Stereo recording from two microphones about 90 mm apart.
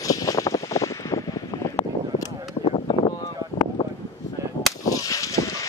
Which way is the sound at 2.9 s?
55° left (ahead or behind).